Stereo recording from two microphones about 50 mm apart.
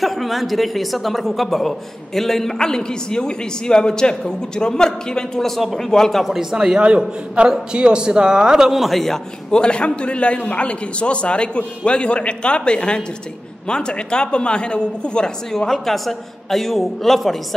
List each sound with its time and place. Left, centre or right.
0.0 s speech: centre
6.3 s a man's voice: centre
9.5 s a man's voice: centre